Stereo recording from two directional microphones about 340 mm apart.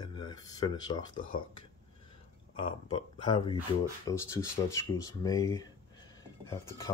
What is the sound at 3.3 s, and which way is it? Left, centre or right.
Speech, centre.